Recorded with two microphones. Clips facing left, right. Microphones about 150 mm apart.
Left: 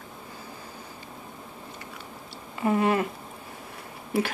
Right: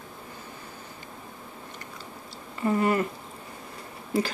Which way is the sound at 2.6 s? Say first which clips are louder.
Left 1 dB; 15° left (ahead or behind).